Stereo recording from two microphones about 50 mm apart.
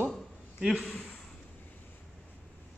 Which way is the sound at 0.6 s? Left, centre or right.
Centre.